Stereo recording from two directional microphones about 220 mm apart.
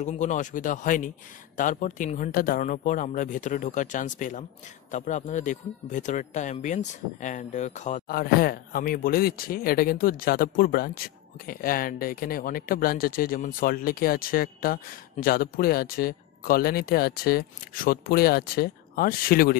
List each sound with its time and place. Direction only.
0.0 s speech: 35° left (ahead or behind)